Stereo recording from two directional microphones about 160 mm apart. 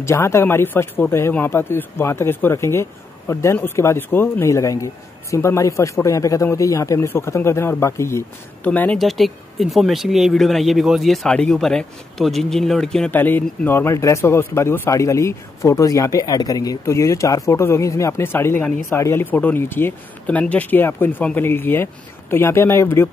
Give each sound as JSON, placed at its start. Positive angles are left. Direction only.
{"t": 0.0, "sound": "speech", "side_deg": 15}